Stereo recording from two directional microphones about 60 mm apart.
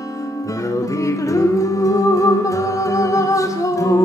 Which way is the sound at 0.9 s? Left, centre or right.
Left.